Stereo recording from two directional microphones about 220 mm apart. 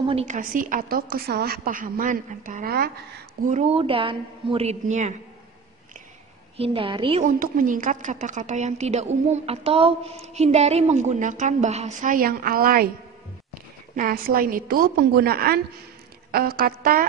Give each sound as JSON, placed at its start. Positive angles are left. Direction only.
{"t": 0.1, "sound": "a woman's voice", "side_deg": -30}
{"t": 3.4, "sound": "a woman's voice", "side_deg": -30}
{"t": 6.5, "sound": "a woman's voice", "side_deg": -25}
{"t": 13.9, "sound": "a woman's voice", "side_deg": -40}